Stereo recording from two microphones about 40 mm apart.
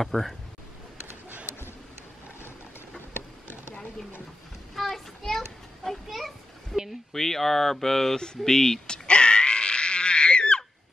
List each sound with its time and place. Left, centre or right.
0.0 s speech: centre
4.7 s children playing: centre
7.1 s speech: centre
8.5 s wail: centre